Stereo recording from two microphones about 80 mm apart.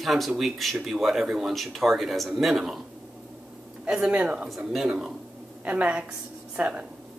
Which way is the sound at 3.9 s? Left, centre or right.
Centre.